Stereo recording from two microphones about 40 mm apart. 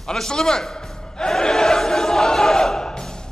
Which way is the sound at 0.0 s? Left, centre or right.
Centre.